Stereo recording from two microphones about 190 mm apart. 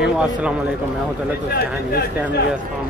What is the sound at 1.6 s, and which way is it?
Speech, 55° left (ahead or behind).